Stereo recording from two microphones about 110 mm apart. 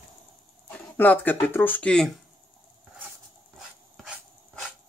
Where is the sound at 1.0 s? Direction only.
15° left (ahead or behind).